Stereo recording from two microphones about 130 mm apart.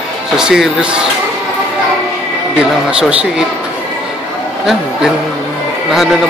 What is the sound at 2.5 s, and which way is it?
Speech, 5° right (ahead or behind).